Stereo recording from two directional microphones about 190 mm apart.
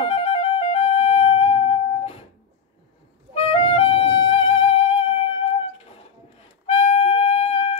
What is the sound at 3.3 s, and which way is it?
Music, 30° left (ahead or behind).